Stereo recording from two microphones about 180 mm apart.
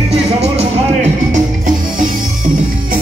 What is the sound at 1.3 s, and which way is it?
Music, 45° right (ahead or behind).